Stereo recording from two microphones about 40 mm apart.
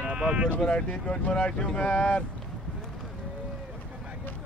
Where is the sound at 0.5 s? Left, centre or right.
Left.